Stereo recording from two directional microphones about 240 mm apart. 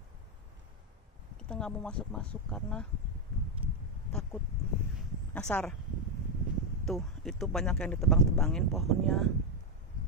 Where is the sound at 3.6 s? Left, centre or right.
Right.